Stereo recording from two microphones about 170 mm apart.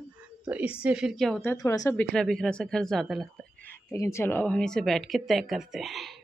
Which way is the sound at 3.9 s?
15° left (ahead or behind).